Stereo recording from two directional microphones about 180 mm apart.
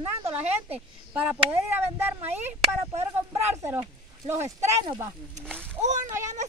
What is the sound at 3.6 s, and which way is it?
Speech, 15° right (ahead or behind).